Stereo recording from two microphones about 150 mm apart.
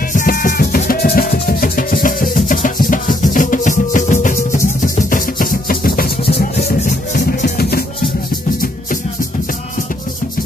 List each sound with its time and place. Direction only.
0.1 s music: 65° left (ahead or behind); by 7.8 s 85° left